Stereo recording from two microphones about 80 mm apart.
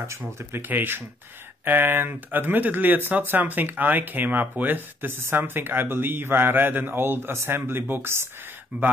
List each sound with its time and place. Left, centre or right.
0.0 s speech: right